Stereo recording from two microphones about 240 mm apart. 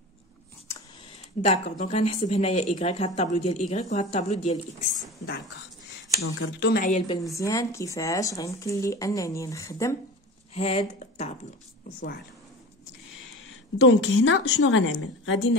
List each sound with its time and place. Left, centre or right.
1.4 s speech: left
6.2 s a woman's voice: left
6.7 s a woman's voice: left
7.2 s speech: centre
10.5 s speech: left
13.5 s a woman's voice: left